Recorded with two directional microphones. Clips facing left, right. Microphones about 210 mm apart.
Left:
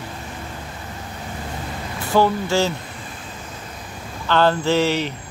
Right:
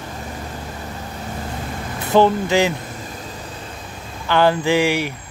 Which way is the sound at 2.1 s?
20° right (ahead or behind).